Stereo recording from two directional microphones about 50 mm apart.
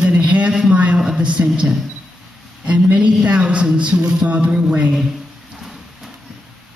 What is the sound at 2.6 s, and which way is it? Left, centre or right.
A man's voice, right.